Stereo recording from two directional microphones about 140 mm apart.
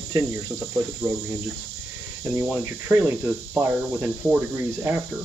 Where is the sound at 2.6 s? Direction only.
15° right (ahead or behind).